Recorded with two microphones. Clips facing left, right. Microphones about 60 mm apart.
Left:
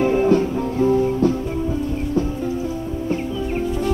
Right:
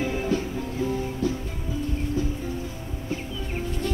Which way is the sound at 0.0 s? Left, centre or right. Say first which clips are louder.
Left 10 dB; left.